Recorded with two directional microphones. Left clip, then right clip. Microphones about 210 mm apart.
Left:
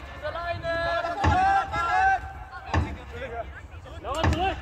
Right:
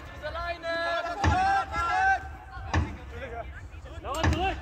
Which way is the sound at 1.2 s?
30° right (ahead or behind).